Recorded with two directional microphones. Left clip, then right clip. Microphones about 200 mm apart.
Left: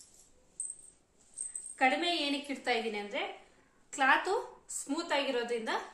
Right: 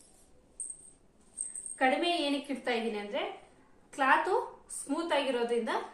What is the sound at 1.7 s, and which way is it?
A woman's voice, 40° left (ahead or behind).